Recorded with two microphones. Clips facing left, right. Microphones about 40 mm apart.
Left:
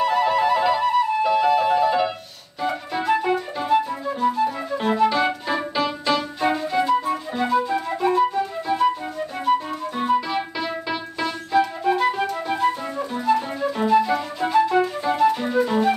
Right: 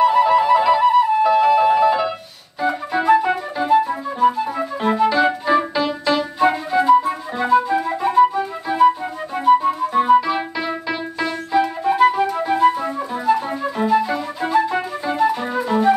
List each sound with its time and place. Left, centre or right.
0.0 s music: centre
3.8 s flute: centre
9.4 s music: centre
12.6 s flute: centre
13.2 s flute: centre